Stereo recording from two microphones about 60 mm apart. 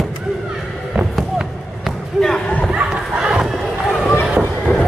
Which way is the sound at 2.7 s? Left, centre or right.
Centre.